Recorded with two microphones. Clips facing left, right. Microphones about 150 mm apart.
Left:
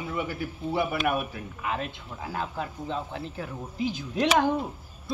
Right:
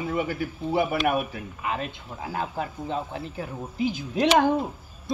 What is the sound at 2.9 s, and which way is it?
Speech, 10° right (ahead or behind).